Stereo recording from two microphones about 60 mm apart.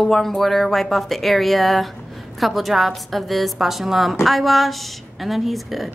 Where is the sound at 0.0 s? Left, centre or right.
Centre.